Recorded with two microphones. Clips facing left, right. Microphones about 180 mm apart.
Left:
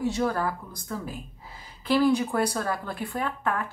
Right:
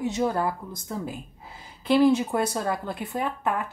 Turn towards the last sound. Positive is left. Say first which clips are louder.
# right 1 dB
turn(degrees=-20)  # may be behind; listen again after turning